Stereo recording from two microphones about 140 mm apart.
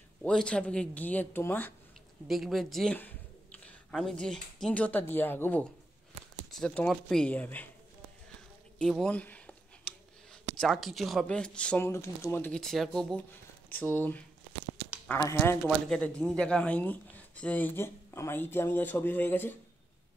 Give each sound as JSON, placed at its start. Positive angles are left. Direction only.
{"t": 0.2, "sound": "speech", "side_deg": 5}
{"t": 2.2, "sound": "speech", "side_deg": 0}
{"t": 8.7, "sound": "a sound", "side_deg": 5}
{"t": 10.6, "sound": "speech", "side_deg": 0}
{"t": 11.8, "sound": "speech", "side_deg": 20}
{"t": 12.5, "sound": "speech", "side_deg": 0}
{"t": 13.7, "sound": "speech", "side_deg": 15}
{"t": 15.6, "sound": "speech", "side_deg": 5}